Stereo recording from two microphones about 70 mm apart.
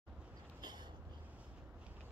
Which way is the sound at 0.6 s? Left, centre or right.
Right.